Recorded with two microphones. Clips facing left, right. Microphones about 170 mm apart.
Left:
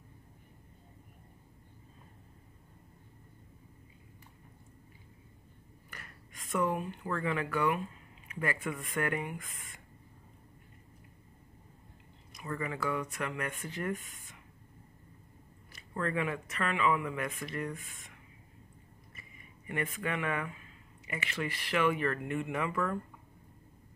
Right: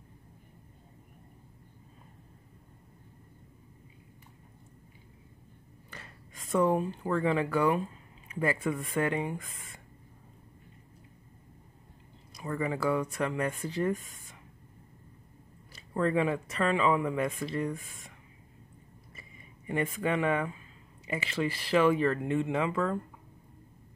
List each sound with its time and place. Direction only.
5.9 s speech: 25° right (ahead or behind)
12.4 s speech: 30° right (ahead or behind)
15.7 s speech: 30° right (ahead or behind)
19.1 s a sound: 30° right (ahead or behind)
21.1 s speech: 30° right (ahead or behind)